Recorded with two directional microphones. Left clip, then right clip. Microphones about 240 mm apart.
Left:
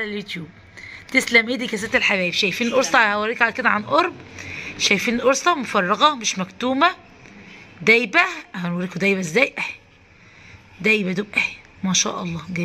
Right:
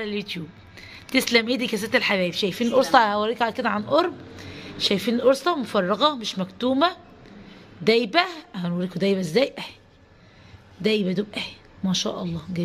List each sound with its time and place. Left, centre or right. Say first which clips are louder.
0.0 s a woman's voice: left 2 dB; centre
10.8 s a woman's voice: left 4 dB; centre